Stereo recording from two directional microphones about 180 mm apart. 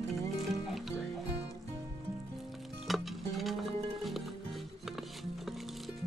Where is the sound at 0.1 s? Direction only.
Centre (ahead or behind).